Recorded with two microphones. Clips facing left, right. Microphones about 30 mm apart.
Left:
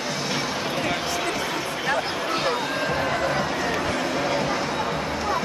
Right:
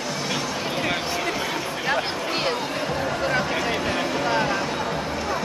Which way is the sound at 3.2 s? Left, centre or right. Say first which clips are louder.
Right 1 dB; centre.